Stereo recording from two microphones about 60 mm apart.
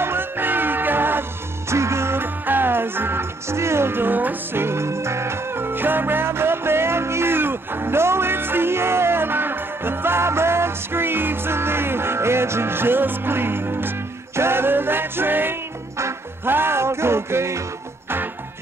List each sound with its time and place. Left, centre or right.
0.0 s music: right
1.7 s music: right
4.6 s music: right